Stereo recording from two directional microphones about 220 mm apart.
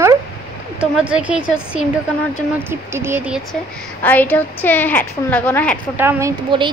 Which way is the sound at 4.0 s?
10° left (ahead or behind).